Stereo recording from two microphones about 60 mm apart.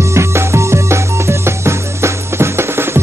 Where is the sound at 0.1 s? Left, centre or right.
Right.